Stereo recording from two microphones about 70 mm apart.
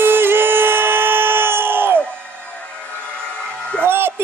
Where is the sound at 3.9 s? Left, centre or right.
Right.